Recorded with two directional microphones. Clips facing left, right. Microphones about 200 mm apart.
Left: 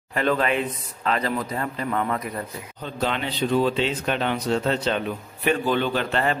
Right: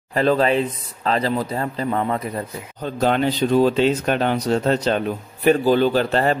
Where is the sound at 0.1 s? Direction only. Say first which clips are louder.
Right 5 dB; 35° right (ahead or behind).